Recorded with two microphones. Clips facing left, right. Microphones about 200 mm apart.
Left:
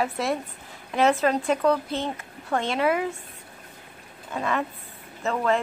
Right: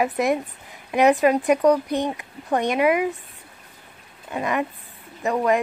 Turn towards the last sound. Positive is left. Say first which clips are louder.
# right 3 dB
turn(degrees=-15)  # may be behind; listen again after turning